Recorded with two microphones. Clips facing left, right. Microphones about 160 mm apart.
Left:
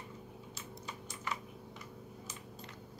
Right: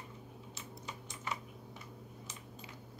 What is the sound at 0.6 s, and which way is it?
Typing, 20° right (ahead or behind).